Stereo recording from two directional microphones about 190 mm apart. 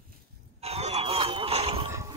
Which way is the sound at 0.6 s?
35° right (ahead or behind).